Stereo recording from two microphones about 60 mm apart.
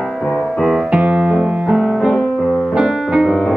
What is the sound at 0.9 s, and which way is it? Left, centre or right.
Piano, centre.